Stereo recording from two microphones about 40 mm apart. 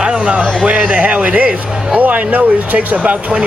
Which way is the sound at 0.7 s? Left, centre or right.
Right.